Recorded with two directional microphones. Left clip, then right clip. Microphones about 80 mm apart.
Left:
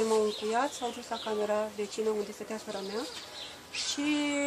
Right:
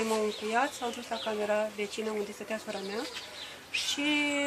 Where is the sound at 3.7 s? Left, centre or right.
Left.